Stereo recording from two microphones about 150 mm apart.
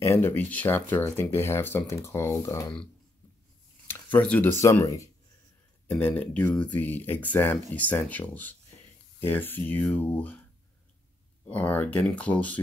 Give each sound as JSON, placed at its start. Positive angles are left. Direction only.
{"t": 0.0, "sound": "speech", "side_deg": 15}
{"t": 3.8, "sound": "speech", "side_deg": 10}
{"t": 11.4, "sound": "speech", "side_deg": 10}